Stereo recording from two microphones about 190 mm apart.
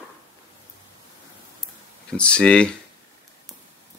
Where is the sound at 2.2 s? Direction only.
5° left (ahead or behind).